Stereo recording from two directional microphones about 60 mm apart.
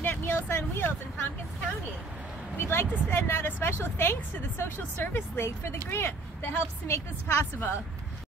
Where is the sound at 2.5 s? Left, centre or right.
Left.